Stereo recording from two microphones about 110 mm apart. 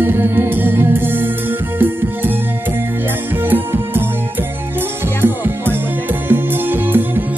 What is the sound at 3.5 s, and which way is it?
Music, 20° right (ahead or behind).